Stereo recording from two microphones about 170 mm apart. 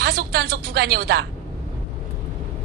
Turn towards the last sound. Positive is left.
turn(degrees=-70)  # may be behind; listen again after turning